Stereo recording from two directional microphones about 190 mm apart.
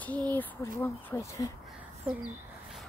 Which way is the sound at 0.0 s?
10° left (ahead or behind).